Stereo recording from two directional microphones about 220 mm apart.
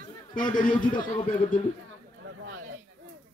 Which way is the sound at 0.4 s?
20° left (ahead or behind).